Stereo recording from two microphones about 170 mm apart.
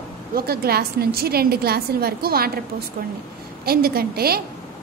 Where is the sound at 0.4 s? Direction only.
65° right (ahead or behind).